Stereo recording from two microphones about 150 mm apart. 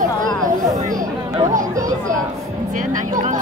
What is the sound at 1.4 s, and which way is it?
Speech, 25° right (ahead or behind).